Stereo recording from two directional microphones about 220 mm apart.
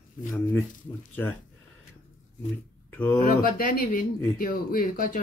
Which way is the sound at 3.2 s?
40° left (ahead or behind).